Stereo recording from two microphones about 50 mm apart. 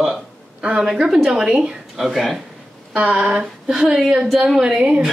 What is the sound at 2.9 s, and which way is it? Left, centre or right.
Speech, right.